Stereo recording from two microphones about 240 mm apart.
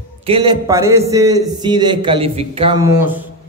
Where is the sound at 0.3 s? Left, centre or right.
Centre.